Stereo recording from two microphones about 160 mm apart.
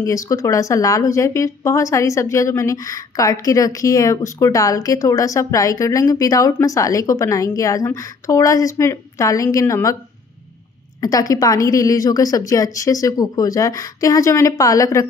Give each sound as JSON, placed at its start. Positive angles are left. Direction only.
{"t": 0.0, "sound": "speech", "side_deg": 20}
{"t": 11.0, "sound": "speech", "side_deg": 20}